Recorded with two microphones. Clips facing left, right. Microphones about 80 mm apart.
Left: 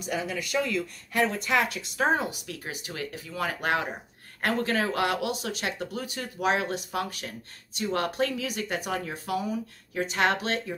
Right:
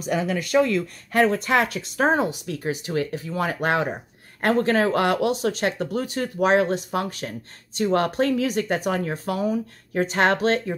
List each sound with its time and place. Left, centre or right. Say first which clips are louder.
0.0 s speech: right 7 dB; right